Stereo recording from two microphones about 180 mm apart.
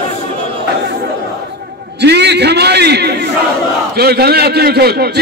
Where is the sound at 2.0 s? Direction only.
70° right (ahead or behind).